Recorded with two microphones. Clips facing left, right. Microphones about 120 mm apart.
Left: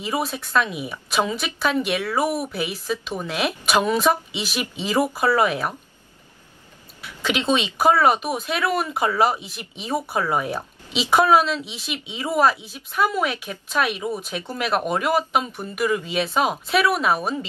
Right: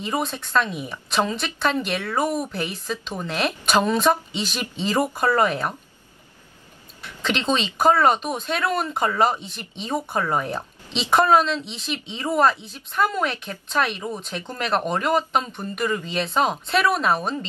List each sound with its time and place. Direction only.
0.0 s a woman's voice: 5° left (ahead or behind)
7.0 s speech: 5° left (ahead or behind)